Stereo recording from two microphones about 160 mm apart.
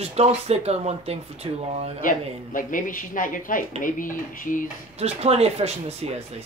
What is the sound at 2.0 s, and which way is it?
Speech, 55° left (ahead or behind).